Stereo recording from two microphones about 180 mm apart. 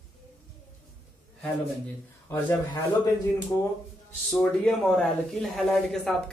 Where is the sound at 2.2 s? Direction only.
15° left (ahead or behind).